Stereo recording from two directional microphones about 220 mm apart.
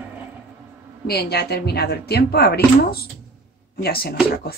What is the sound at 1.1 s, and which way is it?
Speech, 45° left (ahead or behind).